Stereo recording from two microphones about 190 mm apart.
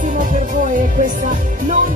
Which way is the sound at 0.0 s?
40° right (ahead or behind).